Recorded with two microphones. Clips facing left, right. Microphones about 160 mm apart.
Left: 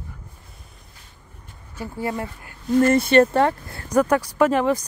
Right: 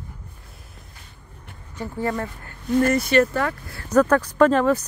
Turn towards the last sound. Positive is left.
turn(degrees=15)  # may be behind; listen again after turning